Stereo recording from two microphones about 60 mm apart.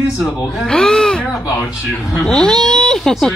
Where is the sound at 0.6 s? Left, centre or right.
Centre.